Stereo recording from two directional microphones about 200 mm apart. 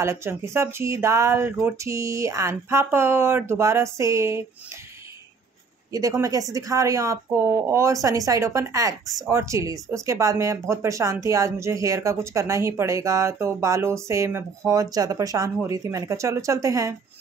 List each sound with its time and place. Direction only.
0.0 s speech: 15° right (ahead or behind)
5.9 s speech: 15° right (ahead or behind)